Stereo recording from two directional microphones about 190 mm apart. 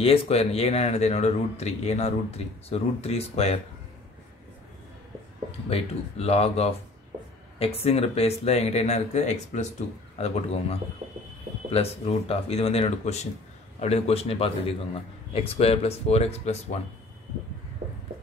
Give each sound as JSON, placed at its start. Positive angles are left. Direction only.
{"t": 0.0, "sound": "speech", "side_deg": 30}
{"t": 5.7, "sound": "speech", "side_deg": 30}